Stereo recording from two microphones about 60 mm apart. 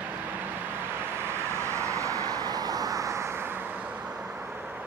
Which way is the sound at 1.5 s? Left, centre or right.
Right.